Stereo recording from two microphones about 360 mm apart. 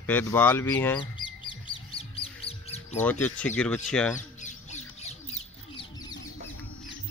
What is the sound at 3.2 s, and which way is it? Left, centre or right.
Speech, centre.